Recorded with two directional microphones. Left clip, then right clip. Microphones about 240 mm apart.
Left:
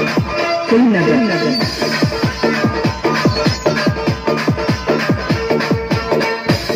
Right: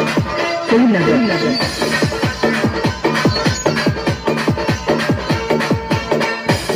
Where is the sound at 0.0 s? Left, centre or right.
Right.